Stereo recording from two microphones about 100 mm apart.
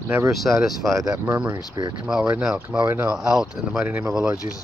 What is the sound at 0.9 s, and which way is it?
Speech, 35° right (ahead or behind).